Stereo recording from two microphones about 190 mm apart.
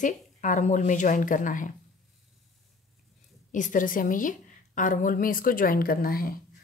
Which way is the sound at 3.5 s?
45° left (ahead or behind).